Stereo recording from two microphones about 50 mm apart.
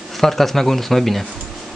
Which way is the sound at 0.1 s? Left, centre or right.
Centre.